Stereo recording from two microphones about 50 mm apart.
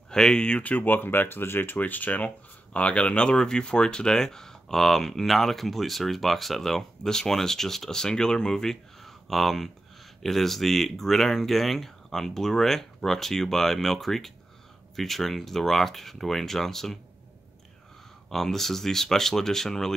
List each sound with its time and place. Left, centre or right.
0.1 s speech: centre
0.7 s speech: left; by 17.0 s centre
18.3 s speech: centre